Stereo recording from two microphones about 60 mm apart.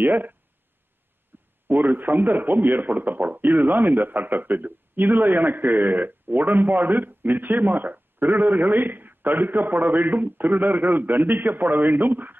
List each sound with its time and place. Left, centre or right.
0.0 s a man's voice: right